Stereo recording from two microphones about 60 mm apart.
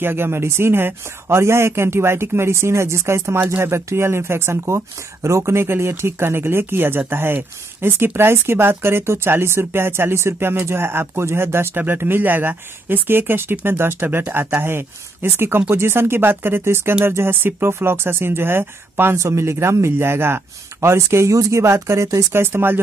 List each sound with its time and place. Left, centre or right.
0.0 s speech: right
19.1 s speech: right
21.3 s speech: right
22.3 s speech: right